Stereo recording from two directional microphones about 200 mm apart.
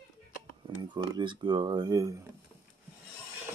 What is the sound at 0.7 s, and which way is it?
Speech, 25° right (ahead or behind).